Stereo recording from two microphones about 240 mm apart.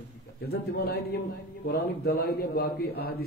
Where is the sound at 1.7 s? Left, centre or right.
Left.